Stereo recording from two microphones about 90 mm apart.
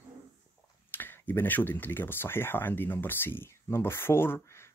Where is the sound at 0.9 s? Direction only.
25° left (ahead or behind).